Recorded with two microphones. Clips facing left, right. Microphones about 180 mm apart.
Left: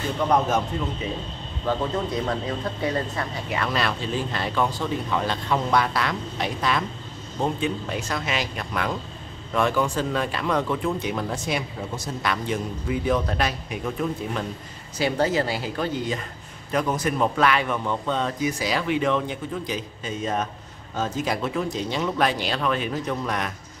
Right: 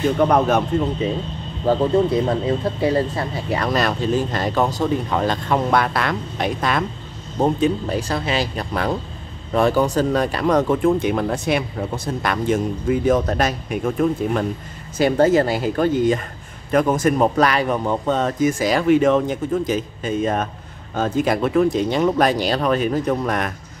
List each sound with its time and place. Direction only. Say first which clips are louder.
0.2 s speech: right 3 dB; 60° right (ahead or behind)
1.7 s speech: right 9 dB; 30° right (ahead or behind); by 6.8 s 50° right (ahead or behind)
7.3 s speech: right 7 dB; 40° right (ahead or behind)